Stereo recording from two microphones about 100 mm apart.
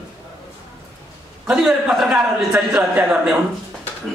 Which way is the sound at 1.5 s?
5° right (ahead or behind).